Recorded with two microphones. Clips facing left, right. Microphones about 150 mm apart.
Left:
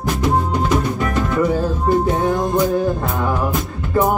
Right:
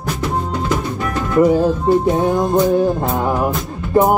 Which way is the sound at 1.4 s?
20° right (ahead or behind).